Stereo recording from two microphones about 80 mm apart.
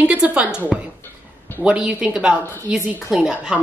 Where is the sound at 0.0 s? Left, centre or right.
Centre.